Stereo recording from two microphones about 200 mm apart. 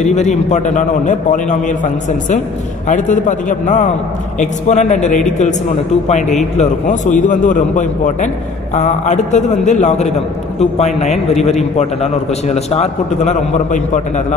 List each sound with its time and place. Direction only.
0.0 s a man's voice: 35° left (ahead or behind)